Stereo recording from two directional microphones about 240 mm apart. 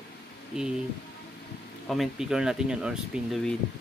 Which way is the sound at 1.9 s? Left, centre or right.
Centre.